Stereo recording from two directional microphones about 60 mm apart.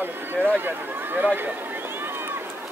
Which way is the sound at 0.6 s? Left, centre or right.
Right.